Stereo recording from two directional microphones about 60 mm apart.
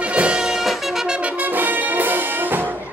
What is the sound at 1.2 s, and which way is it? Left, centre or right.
Brass instrument, right.